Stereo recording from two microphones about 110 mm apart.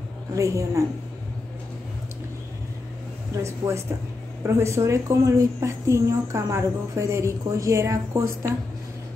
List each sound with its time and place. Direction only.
0.3 s a woman's voice: 30° right (ahead or behind)
3.4 s a woman's voice: 25° right (ahead or behind)